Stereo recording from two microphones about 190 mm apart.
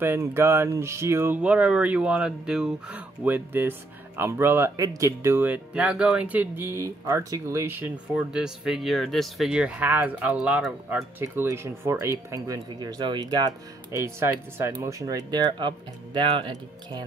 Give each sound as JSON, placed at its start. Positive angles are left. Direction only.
{"t": 0.0, "sound": "speech", "side_deg": -10}